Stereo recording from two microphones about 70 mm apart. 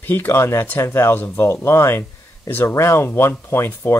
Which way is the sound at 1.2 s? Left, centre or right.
Left.